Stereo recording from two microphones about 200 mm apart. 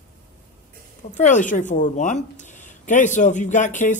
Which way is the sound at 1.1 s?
40° left (ahead or behind).